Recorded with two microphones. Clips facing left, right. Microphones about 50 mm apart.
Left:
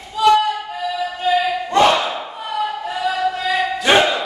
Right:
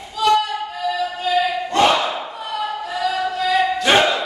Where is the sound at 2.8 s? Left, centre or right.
Centre.